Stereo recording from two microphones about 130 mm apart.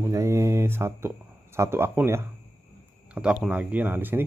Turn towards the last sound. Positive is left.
turn(degrees=-15)  # may be behind; listen again after turning